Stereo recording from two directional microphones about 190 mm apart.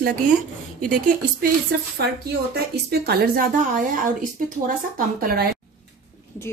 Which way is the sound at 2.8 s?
55° right (ahead or behind).